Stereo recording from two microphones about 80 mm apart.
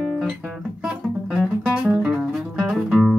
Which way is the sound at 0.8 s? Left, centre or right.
Centre.